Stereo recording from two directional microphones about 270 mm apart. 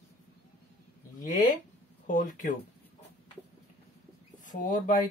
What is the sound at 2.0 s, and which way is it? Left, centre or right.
Speech, left.